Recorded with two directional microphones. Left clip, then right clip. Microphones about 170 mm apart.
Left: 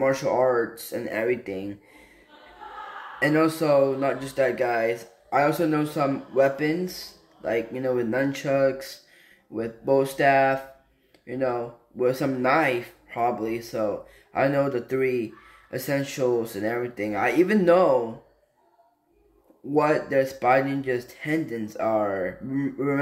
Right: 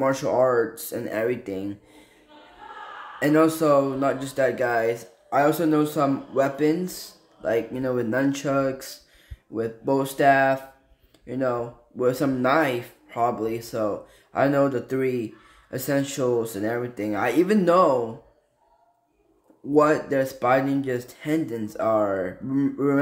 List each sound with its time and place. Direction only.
0.0 s speech: 25° right (ahead or behind)
3.2 s speech: 20° right (ahead or behind)
19.7 s speech: 20° right (ahead or behind)